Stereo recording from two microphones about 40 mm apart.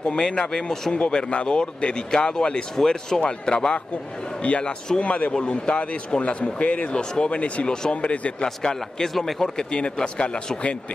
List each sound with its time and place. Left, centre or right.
0.2 s speech: centre
2.7 s a man's voice: centre
3.2 s a man's voice: left
6.9 s speech: left
7.2 s a man's voice: left
7.6 s a man's voice: centre
7.9 s speech: left
8.6 s a man's voice: centre
9.7 s speech: left